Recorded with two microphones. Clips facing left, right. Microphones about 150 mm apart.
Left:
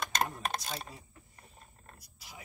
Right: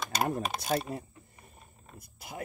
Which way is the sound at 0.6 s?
55° right (ahead or behind).